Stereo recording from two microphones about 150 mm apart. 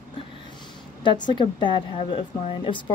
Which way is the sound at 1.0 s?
30° left (ahead or behind).